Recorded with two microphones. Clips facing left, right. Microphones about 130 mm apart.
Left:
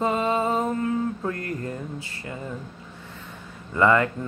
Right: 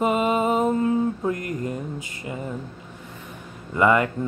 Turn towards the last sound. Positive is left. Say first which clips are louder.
# right 1 dB
turn(degrees=-15)  # may be behind; listen again after turning